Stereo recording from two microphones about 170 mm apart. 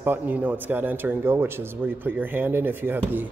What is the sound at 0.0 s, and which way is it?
Speech, 10° right (ahead or behind).